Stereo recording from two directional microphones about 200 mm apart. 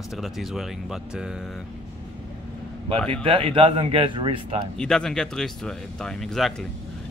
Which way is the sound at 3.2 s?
25° right (ahead or behind).